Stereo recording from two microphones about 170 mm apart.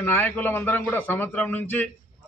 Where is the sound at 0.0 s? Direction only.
10° left (ahead or behind).